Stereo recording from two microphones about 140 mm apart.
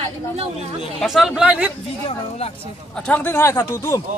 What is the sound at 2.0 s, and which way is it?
Speech, 45° left (ahead or behind).